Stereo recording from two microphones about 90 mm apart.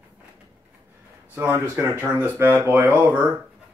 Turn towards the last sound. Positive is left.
turn(degrees=-20)  # may be behind; listen again after turning